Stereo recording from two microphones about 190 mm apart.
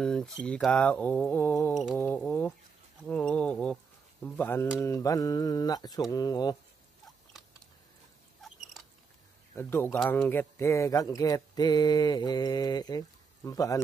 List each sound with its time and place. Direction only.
0.0 s speech: centre (ahead or behind)
1.7 s speech: centre (ahead or behind); by 6.5 s 20° left (ahead or behind)
9.6 s speech: 10° left (ahead or behind)